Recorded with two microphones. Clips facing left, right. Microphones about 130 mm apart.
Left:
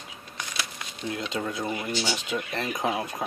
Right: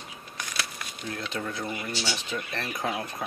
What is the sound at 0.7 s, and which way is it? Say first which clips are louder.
Speech: left 3 dB; 20° left (ahead or behind).